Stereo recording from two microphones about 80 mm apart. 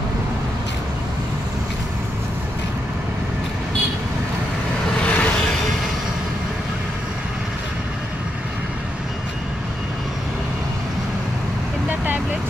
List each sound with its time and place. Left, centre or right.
5.0 s vehicle: centre